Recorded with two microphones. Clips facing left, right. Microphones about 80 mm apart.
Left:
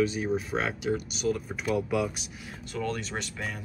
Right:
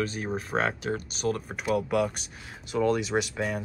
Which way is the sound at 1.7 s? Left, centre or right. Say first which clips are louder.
Right 3 dB; right.